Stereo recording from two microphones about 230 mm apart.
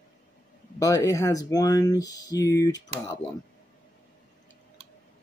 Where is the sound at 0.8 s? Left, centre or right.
Centre.